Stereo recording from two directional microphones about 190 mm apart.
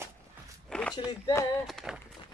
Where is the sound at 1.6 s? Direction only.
Centre (ahead or behind).